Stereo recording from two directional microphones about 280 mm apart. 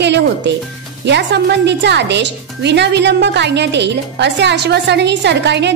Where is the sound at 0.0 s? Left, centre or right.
Right.